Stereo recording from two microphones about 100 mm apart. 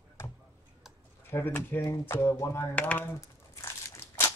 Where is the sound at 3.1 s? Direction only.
30° left (ahead or behind).